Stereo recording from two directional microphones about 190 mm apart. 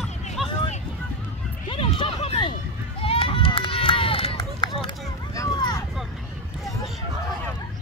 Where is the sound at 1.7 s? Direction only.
25° left (ahead or behind).